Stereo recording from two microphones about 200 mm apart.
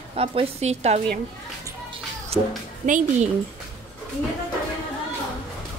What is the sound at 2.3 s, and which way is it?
Speech, 30° right (ahead or behind).